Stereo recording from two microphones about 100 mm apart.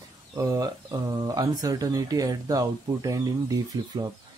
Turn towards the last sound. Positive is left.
turn(degrees=-35)  # may be behind; listen again after turning